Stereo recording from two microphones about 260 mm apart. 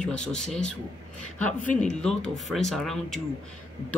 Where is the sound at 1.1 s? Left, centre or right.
Right.